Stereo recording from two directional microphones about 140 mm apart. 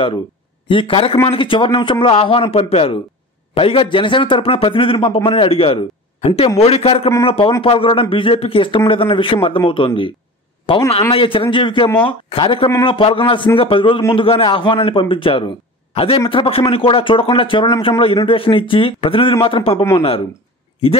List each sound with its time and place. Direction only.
0.7 s a man's voice: 40° left (ahead or behind)